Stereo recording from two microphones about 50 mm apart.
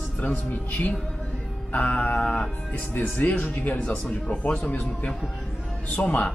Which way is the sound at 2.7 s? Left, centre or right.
Left.